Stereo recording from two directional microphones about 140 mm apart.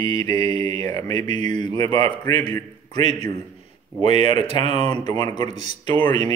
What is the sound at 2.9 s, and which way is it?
Speech, 35° left (ahead or behind).